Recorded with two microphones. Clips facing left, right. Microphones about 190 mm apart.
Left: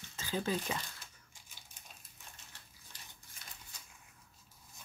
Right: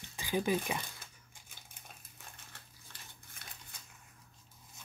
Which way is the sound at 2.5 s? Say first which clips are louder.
Right 3 dB; 55° right (ahead or behind).